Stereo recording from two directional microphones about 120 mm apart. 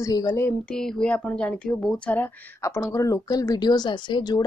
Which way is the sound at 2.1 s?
25° left (ahead or behind).